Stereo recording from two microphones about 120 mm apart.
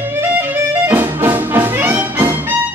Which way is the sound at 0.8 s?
15° right (ahead or behind).